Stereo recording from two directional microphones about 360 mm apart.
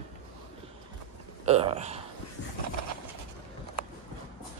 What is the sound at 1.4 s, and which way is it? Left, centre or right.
Burping, centre.